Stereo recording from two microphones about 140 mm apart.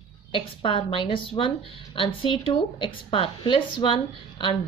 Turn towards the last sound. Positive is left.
turn(degrees=35)  # may be behind; listen again after turning